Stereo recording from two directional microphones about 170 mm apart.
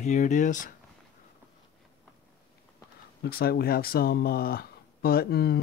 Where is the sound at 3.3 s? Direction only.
65° left (ahead or behind).